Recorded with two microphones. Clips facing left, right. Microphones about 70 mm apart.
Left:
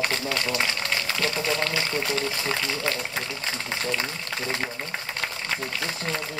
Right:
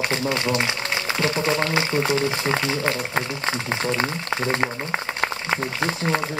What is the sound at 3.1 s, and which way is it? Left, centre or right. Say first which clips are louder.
Speech: right 6 dB; right.